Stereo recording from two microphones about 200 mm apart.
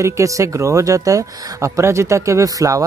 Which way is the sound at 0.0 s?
15° right (ahead or behind).